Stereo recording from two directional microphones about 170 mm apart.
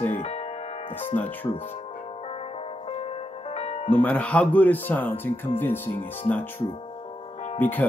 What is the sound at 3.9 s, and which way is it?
Speech, 10° left (ahead or behind).